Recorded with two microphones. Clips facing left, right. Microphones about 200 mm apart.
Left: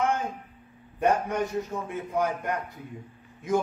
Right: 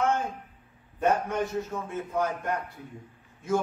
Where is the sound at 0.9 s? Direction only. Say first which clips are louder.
Left 1 dB; 10° left (ahead or behind).